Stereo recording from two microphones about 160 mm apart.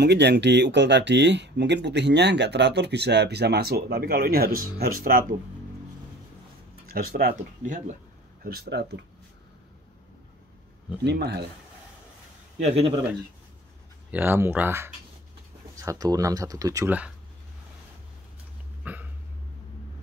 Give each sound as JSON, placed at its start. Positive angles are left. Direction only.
{"t": 0.0, "sound": "speech", "side_deg": -90}
{"t": 6.9, "sound": "speech", "side_deg": -65}
{"t": 8.5, "sound": "speech", "side_deg": -85}
{"t": 11.1, "sound": "speech", "side_deg": -90}
{"t": 12.5, "sound": "speech", "side_deg": -40}
{"t": 14.1, "sound": "speech", "side_deg": -15}
{"t": 18.8, "sound": "dog", "side_deg": -10}